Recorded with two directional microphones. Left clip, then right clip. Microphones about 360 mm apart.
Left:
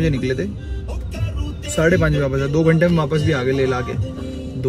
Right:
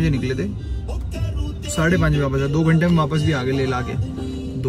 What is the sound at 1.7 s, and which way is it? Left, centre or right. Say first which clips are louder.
A man's voice: left 4 dB; centre.